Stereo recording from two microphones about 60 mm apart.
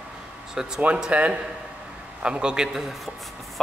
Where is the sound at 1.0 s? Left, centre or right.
Right.